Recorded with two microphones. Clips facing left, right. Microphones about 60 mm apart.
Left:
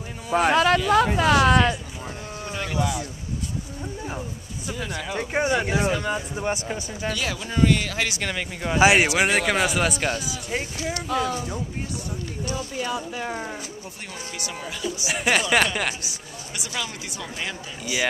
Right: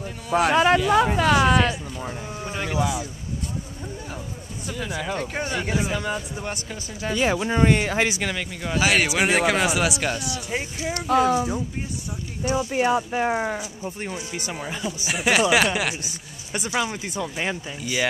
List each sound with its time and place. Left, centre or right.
0.3 s speech: centre
4.6 s speech: centre
5.1 s speech: centre
5.9 s speech: centre
7.2 s speech: right
8.2 s speech: centre
8.7 s speech: left
9.2 s speech: centre
10.9 s speech: right
11.3 s speech: centre
12.7 s speech: right
13.6 s speech: centre
15.0 s speech: centre
16.7 s speech: right